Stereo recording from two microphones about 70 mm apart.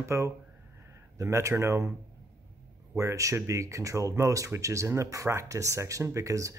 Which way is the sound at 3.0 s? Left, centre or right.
Right.